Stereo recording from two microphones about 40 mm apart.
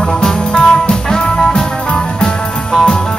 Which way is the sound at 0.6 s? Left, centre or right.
Centre.